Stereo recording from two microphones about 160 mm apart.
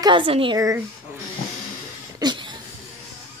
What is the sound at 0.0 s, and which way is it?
Speech, 30° right (ahead or behind).